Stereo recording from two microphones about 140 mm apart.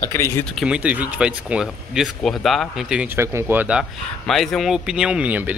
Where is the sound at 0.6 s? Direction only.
10° right (ahead or behind).